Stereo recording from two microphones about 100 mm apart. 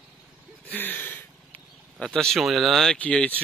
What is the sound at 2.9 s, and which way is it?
Speech, 15° left (ahead or behind).